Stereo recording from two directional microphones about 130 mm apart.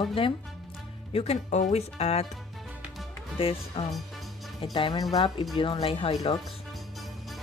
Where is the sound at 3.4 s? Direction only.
45° left (ahead or behind).